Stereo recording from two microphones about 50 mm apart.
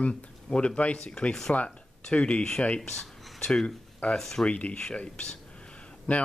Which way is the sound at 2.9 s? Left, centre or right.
Centre.